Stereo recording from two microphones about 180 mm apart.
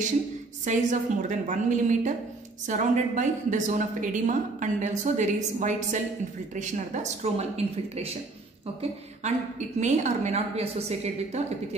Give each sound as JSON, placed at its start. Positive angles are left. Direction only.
{"t": 0.7, "sound": "a woman's voice", "side_deg": -45}
{"t": 9.8, "sound": "a woman's voice", "side_deg": -40}